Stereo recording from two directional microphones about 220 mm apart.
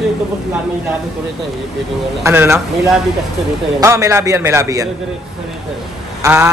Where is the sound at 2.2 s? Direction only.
10° right (ahead or behind).